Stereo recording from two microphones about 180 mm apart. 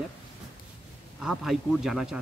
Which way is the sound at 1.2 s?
Centre (ahead or behind).